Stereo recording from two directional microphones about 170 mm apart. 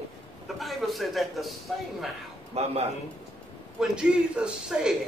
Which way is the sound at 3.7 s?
5° right (ahead or behind).